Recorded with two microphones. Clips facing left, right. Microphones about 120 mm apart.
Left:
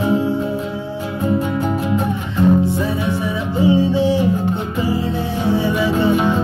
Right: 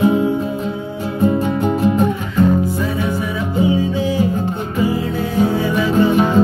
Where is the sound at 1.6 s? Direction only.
35° right (ahead or behind).